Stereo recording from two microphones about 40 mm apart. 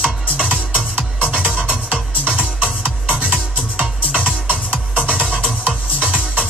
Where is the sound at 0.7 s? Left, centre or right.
Right.